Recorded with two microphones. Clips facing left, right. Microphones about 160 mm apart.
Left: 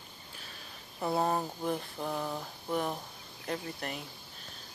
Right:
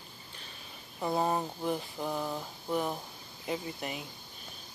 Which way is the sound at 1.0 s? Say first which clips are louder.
Even; centre (ahead or behind).